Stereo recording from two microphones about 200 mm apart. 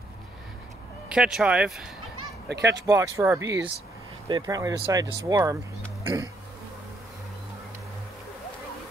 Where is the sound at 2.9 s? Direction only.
15° right (ahead or behind).